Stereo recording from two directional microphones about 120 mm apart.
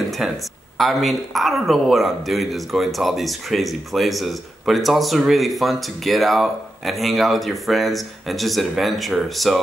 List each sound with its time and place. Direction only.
0.1 s speech: centre (ahead or behind)